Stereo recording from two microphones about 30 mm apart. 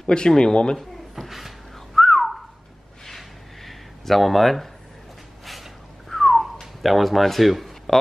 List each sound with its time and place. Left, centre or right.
0.0 s speech: left
0.7 s drawer open or close: centre
2.0 s whistling: centre
3.1 s a sound: centre